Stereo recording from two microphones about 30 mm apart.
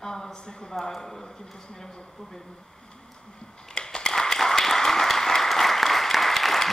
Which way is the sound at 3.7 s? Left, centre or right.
Left.